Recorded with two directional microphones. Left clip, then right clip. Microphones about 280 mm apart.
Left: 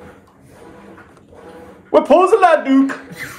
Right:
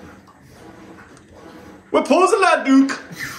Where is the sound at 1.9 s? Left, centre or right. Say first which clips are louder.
Left 4 dB; centre.